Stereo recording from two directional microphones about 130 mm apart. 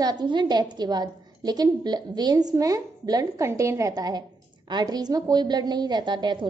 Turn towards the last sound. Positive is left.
turn(degrees=-35)  # may be behind; listen again after turning